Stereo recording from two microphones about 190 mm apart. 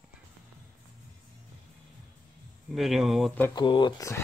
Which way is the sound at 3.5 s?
25° left (ahead or behind).